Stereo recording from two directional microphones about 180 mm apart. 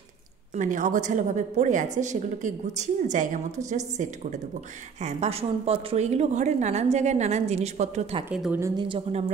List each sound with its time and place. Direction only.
0.6 s a woman's voice: 45° right (ahead or behind)
8.3 s a woman's voice: 10° right (ahead or behind)
8.8 s a woman's voice: 30° right (ahead or behind)